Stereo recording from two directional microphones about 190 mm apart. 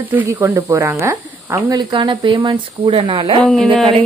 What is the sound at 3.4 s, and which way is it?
Speech, 5° left (ahead or behind).